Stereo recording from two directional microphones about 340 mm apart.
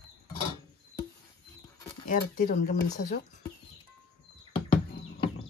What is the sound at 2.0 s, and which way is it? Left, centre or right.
Speech, left.